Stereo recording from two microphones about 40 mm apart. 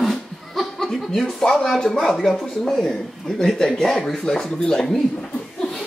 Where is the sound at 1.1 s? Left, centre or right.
Centre.